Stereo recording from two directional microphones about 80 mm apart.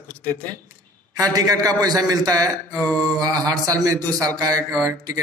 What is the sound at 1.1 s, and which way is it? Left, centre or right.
A man's voice, right.